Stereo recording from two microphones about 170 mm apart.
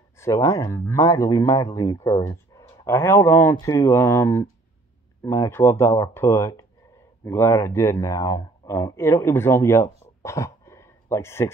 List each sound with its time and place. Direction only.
0.2 s speech: 15° left (ahead or behind)